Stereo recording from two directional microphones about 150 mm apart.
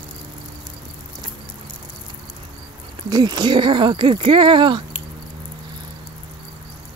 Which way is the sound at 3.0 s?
25° right (ahead or behind).